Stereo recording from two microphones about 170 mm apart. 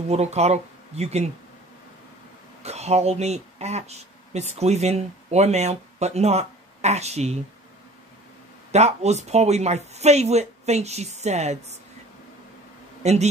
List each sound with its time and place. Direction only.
0.1 s speech: 40° right (ahead or behind)
2.6 s speech: 40° right (ahead or behind)
8.7 s speech: 40° right (ahead or behind)
13.0 s speech: 40° right (ahead or behind)